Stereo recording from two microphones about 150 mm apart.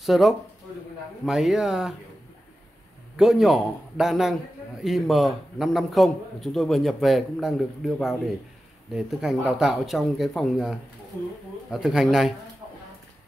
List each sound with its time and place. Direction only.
0.0 s a man's voice: centre (ahead or behind)
3.2 s a man's voice: centre (ahead or behind)